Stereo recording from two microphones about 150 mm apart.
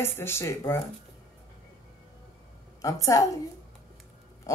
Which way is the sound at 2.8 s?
20° left (ahead or behind).